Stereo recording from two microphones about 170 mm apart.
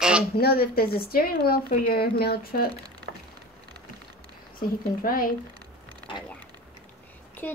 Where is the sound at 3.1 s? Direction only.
70° right (ahead or behind).